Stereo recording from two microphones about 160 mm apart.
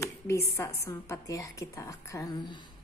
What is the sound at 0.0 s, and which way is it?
A woman's voice, 15° left (ahead or behind).